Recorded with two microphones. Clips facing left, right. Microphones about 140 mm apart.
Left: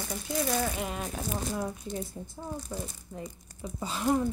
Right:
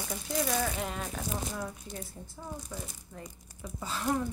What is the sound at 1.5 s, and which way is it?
Speech, 20° left (ahead or behind).